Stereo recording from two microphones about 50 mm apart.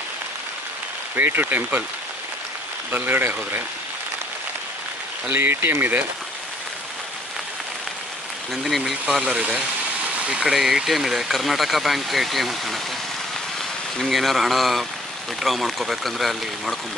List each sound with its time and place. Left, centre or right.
1.1 s speech: right
2.9 s speech: right
5.3 s speech: right
8.6 s speech: centre
9.2 s speech: centre
10.0 s engine: right
10.5 s speech: centre
13.9 s speech: centre